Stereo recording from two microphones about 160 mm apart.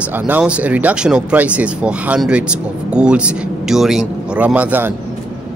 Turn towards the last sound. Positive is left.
turn(degrees=-10)  # may be behind; listen again after turning